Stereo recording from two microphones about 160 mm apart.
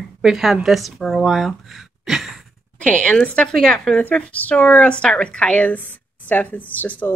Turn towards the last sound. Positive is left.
turn(degrees=10)  # may be behind; listen again after turning